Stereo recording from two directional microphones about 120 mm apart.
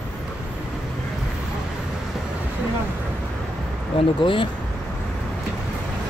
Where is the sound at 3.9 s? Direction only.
45° left (ahead or behind).